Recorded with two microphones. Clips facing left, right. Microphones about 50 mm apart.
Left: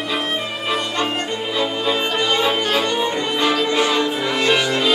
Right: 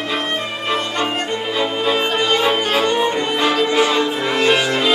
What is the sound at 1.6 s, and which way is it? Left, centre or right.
Music, centre.